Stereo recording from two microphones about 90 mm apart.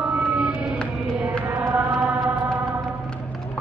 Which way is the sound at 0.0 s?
10° right (ahead or behind).